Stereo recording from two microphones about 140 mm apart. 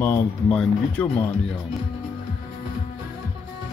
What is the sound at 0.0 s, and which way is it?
Speech, 15° left (ahead or behind).